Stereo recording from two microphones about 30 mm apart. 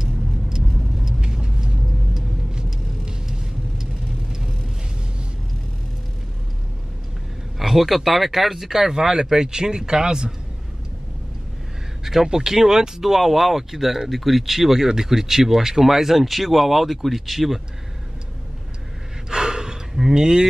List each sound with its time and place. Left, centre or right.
0.0 s vehicle: centre
7.5 s a man's voice: centre; by 10.3 s right
12.0 s speech: centre
13.0 s speech: centre
19.3 s gasp: right
20.0 s a man's voice: centre